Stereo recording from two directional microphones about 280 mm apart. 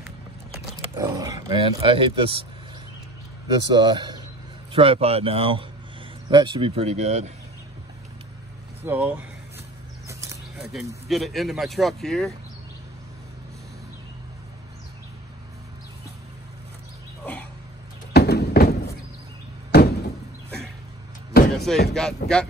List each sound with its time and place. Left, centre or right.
0.9 s speech: centre
3.7 s speech: centre
8.8 s speech: centre
10.0 s a sound: centre
10.7 s speech: centre
17.2 s a sound: centre
18.1 s a sound: left
19.7 s door: left
21.5 s slam: centre
21.9 s speech: centre